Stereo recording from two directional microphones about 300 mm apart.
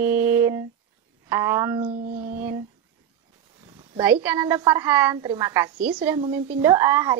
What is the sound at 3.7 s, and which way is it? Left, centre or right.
Speech, centre.